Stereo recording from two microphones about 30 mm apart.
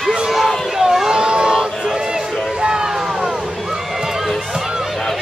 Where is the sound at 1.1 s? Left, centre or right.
Right.